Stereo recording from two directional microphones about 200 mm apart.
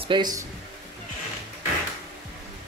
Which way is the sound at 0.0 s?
20° right (ahead or behind).